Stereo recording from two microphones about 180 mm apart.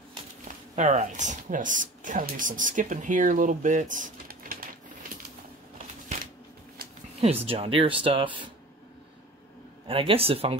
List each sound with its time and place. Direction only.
0.7 s speech: 40° right (ahead or behind)
7.4 s speech: 30° right (ahead or behind)
9.8 s speech: 30° right (ahead or behind)